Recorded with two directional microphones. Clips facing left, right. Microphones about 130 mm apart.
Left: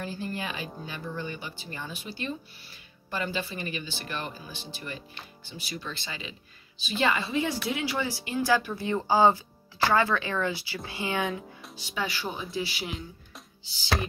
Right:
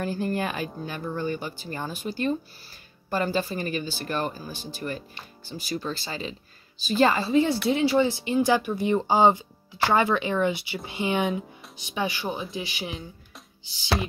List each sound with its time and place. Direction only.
0.0 s speech: 50° right (ahead or behind); by 13.0 s 20° right (ahead or behind)